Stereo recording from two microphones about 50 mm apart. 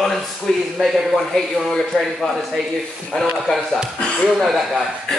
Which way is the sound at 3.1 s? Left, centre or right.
Centre.